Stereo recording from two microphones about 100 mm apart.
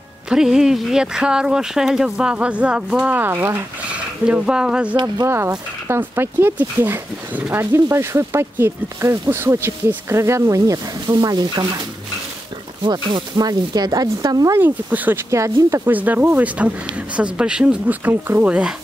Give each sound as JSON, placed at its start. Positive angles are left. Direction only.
{"t": 0.3, "sound": "speech", "side_deg": -5}
{"t": 4.3, "sound": "speech", "side_deg": -10}
{"t": 5.0, "sound": "speech", "side_deg": -35}
{"t": 11.1, "sound": "speech", "side_deg": -45}
{"t": 12.8, "sound": "speech", "side_deg": -45}
{"t": 14.5, "sound": "speech", "side_deg": -20}
{"t": 15.3, "sound": "speech", "side_deg": -30}
{"t": 15.9, "sound": "speech", "side_deg": -15}